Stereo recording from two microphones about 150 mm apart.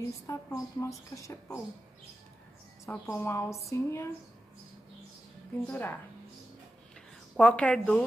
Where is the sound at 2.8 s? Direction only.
15° left (ahead or behind).